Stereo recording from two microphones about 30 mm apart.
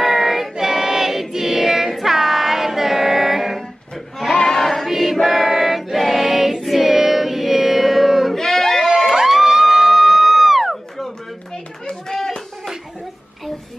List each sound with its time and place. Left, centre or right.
0.0 s child singing: centre
1.3 s choir: centre
1.9 s music: centre
4.6 s choir: centre
4.8 s choir: centre
6.8 s music: centre
8.4 s a sound: centre
8.9 s crowd: centre
9.2 s a sound: centre
11.9 s a sound: centre